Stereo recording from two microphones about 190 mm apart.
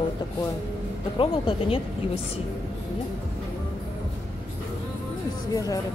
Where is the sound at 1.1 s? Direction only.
25° left (ahead or behind).